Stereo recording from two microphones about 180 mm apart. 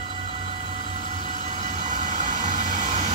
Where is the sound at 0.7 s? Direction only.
40° right (ahead or behind).